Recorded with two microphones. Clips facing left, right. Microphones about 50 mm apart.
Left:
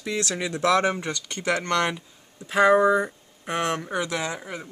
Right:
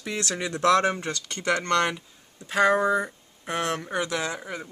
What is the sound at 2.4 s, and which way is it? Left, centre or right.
Speech, centre.